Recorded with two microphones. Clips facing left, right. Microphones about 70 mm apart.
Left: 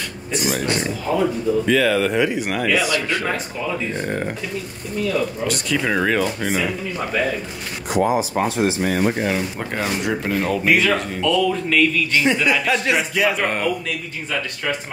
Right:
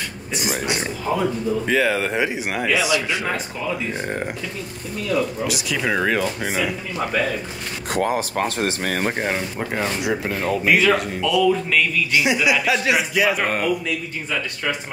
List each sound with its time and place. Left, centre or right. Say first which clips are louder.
0.5 s a man's voice: left 2 dB; centre
1.7 s a man's voice: left 2 dB; right
4.0 s speech: left 2 dB; centre
5.5 s a man's voice: left 2 dB; centre
7.9 s speech: left 3 dB; right
9.6 s a man's voice: even; centre